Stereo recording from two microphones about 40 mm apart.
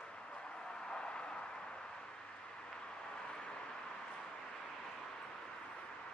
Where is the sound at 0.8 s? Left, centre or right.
Left.